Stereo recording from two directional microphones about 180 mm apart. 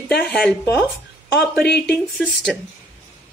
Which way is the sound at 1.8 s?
Centre (ahead or behind).